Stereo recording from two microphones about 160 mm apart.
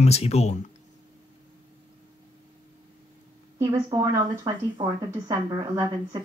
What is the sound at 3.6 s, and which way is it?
A woman's voice, 20° right (ahead or behind).